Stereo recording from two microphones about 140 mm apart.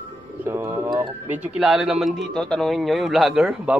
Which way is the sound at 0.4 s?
20° right (ahead or behind).